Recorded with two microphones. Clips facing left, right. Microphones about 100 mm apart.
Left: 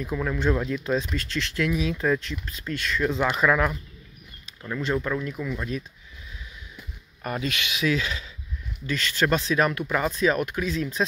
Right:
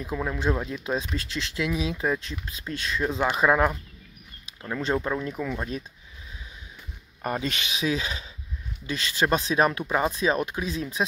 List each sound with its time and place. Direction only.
0.0 s speech: 15° right (ahead or behind)
4.7 s speech: 30° right (ahead or behind)
7.2 s speech: 35° right (ahead or behind)
7.7 s speech: 20° right (ahead or behind)